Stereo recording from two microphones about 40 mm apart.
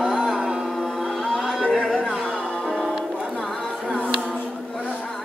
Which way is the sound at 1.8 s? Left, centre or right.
Right.